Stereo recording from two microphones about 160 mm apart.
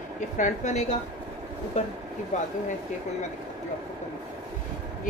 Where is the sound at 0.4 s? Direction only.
45° left (ahead or behind).